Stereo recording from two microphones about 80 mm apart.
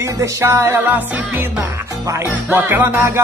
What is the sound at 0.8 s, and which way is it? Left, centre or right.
Music, right.